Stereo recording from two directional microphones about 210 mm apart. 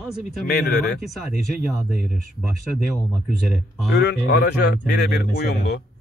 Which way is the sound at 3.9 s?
50° left (ahead or behind).